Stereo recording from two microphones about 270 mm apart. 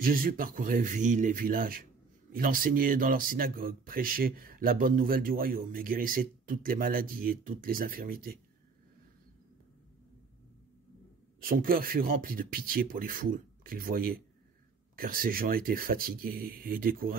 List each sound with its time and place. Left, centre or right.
0.0 s speech: right
11.3 s speech: right